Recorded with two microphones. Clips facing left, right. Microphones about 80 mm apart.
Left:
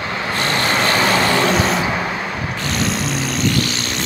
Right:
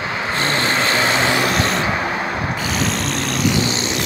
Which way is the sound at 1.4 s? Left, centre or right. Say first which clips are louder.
Left 2 dB; centre.